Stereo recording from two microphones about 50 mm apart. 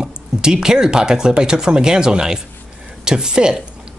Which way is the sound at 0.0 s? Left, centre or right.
Centre.